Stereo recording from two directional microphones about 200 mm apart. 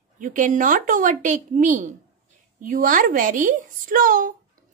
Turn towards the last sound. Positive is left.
turn(degrees=-40)  # may be behind; listen again after turning